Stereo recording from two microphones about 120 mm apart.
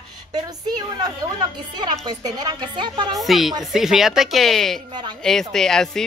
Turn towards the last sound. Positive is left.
turn(degrees=5)  # may be behind; listen again after turning